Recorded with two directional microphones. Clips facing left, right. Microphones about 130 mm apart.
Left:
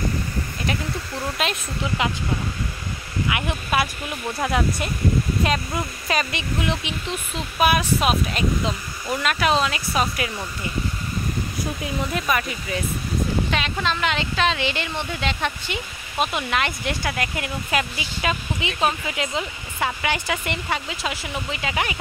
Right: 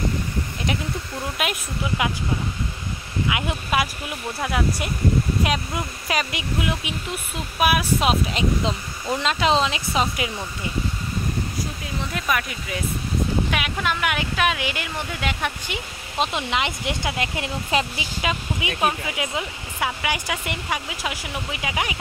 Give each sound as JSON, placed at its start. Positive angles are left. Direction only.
{"t": 1.4, "sound": "speech", "side_deg": -10}
{"t": 3.3, "sound": "speech", "side_deg": -15}
{"t": 4.4, "sound": "speech", "side_deg": -5}
{"t": 8.0, "sound": "speech", "side_deg": -20}
{"t": 12.3, "sound": "speech", "side_deg": 0}
{"t": 13.5, "sound": "speech", "side_deg": -10}
{"t": 18.2, "sound": "speech", "side_deg": -15}